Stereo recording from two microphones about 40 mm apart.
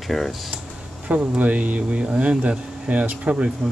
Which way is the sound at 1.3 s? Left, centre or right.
Right.